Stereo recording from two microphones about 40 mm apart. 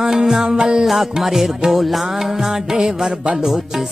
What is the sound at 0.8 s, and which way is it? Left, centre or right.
Music, centre.